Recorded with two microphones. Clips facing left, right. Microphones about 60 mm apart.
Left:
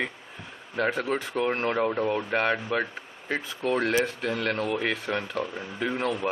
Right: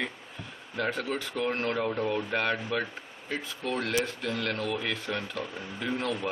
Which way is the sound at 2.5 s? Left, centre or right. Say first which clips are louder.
Left 3 dB; left.